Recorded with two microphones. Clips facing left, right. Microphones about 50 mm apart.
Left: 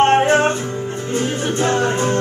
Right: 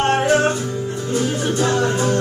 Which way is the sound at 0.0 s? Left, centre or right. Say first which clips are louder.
Left 3 dB; left.